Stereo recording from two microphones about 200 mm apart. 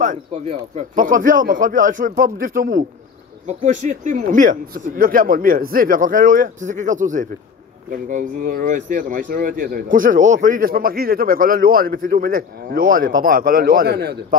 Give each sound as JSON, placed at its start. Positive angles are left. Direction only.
{"t": 0.0, "sound": "speech", "side_deg": -40}